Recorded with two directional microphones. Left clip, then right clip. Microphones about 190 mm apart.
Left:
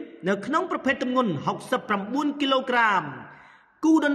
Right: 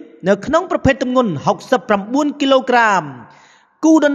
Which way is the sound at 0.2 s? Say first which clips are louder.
Right 10 dB; 55° right (ahead or behind).